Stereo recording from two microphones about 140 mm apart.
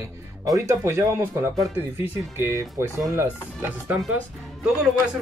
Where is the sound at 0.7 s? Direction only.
20° right (ahead or behind).